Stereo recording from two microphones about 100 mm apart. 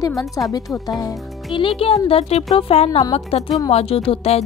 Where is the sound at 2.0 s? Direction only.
85° left.